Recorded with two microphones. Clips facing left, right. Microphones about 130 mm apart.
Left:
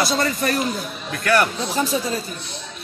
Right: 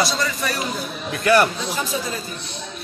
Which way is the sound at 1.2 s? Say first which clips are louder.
Right 2 dB; 15° right (ahead or behind).